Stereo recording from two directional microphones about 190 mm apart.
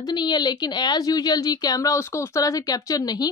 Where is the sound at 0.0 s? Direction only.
20° left (ahead or behind).